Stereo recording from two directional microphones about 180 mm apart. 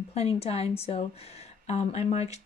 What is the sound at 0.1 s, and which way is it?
Speech, 35° left (ahead or behind).